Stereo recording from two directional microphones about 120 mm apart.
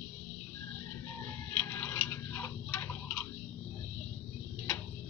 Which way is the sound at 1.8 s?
15° left (ahead or behind).